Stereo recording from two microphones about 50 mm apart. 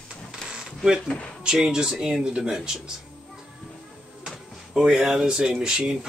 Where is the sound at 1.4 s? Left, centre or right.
Centre.